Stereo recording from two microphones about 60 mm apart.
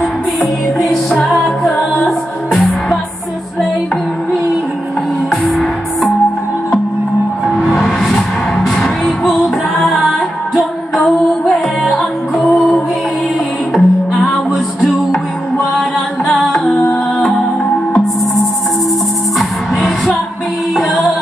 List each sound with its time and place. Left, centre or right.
0.4 s music: centre
1.1 s music: centre
2.0 s music: centre
5.3 s music: centre
7.6 s music: centre
16.3 s music: centre
19.3 s music: centre